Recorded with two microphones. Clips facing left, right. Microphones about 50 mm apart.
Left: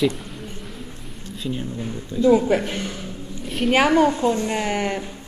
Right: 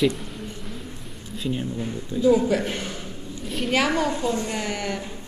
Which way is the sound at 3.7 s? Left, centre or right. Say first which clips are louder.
Left 6 dB; left.